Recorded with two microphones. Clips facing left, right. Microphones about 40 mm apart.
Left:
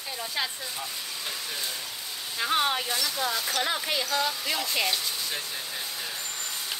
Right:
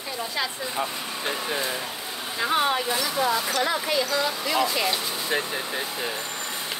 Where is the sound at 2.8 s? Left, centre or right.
Right.